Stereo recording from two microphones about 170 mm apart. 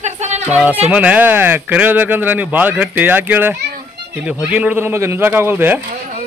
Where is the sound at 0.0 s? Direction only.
40° right (ahead or behind).